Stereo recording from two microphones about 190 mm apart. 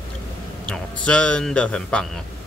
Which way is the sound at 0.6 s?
5° left (ahead or behind).